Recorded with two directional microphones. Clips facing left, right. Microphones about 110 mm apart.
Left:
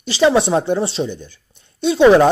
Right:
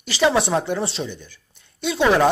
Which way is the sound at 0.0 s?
25° left (ahead or behind).